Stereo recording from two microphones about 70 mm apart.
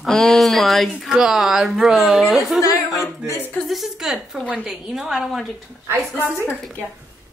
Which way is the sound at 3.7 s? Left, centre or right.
Centre.